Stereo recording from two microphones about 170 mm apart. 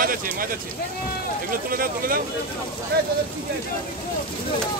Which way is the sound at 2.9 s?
70° right (ahead or behind).